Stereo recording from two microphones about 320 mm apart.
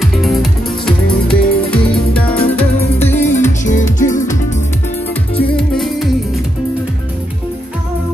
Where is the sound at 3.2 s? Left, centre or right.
Left.